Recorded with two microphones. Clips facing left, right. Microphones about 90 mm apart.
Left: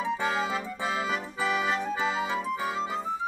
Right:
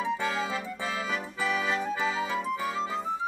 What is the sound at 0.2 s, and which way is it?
Music, 25° left (ahead or behind).